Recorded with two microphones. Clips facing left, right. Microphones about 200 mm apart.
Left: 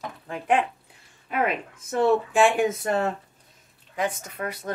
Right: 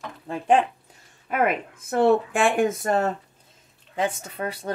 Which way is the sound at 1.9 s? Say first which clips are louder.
Right 1 dB; 60° right (ahead or behind).